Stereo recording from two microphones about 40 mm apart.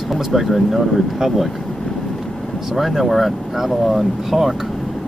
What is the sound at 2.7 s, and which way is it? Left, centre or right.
Speech, centre.